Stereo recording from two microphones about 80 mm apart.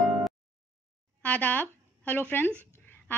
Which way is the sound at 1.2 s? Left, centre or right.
Left.